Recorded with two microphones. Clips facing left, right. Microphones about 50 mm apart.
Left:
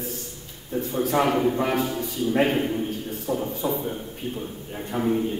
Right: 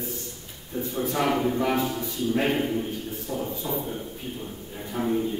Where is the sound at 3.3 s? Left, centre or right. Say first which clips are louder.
Left 5 dB; centre.